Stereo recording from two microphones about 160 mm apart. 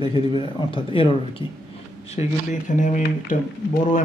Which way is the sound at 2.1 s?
50° left (ahead or behind).